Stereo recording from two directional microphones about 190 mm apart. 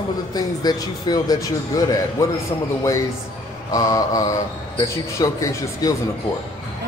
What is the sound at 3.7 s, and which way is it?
A man's voice, 20° left (ahead or behind).